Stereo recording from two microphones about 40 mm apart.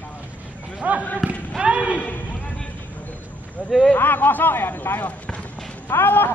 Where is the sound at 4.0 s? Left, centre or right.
Left.